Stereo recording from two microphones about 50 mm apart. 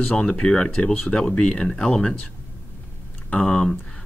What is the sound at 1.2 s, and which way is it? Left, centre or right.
Speech, centre.